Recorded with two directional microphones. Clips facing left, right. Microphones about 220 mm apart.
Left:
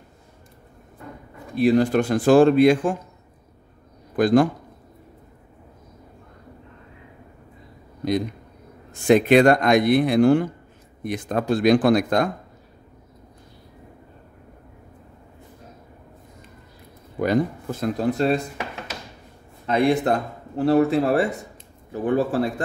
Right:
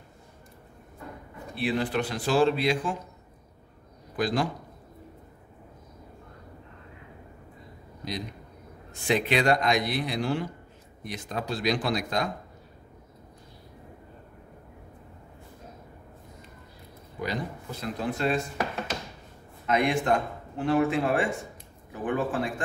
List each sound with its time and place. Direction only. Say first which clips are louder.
1.5 s a man's voice: left 10 dB; 40° left (ahead or behind)
4.2 s a man's voice: left 10 dB; 50° left (ahead or behind)
8.0 s a man's voice: left 12 dB; 50° left (ahead or behind)
17.2 s a man's voice: left 11 dB; 50° left (ahead or behind)
19.6 s speech: left 6 dB; 35° left (ahead or behind)